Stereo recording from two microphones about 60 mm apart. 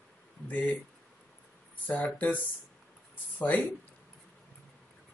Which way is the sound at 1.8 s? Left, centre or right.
Left.